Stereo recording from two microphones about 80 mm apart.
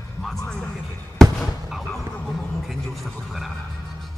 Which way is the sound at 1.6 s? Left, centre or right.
Centre.